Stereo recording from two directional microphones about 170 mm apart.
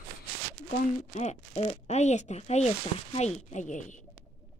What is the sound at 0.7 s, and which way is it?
Speech, 45° left (ahead or behind).